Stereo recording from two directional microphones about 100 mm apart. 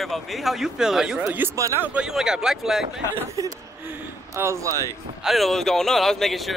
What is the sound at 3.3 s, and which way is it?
Speech, 35° right (ahead or behind).